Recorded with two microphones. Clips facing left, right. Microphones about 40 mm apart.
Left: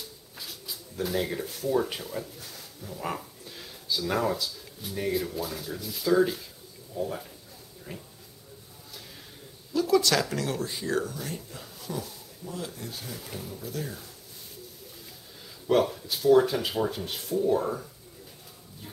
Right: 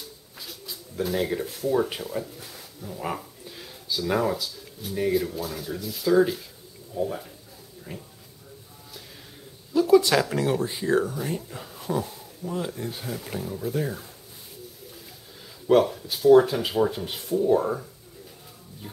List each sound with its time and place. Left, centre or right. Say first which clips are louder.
0.0 s speech: right 1 dB; centre
9.8 s speech: right 5 dB; centre
15.6 s speech: right 4 dB; centre